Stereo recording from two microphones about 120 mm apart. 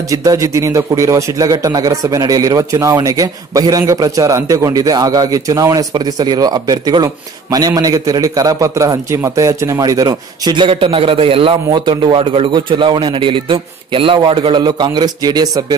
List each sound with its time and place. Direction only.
0.1 s a man's voice: 30° right (ahead or behind)